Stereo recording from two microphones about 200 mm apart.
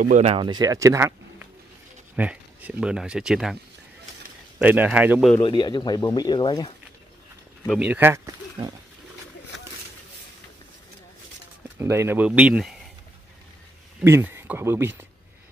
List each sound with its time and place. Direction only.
0.0 s speech: 35° right (ahead or behind); by 3.5 s 5° right (ahead or behind)
4.6 s speech: 5° right (ahead or behind)
5.4 s speech: 25° left (ahead or behind)
7.8 s speech: 10° right (ahead or behind)
11.8 s speech: 15° right (ahead or behind)
14.0 s speech: 10° right (ahead or behind)